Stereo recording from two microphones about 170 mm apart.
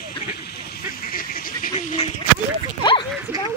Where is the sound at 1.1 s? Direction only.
55° left (ahead or behind).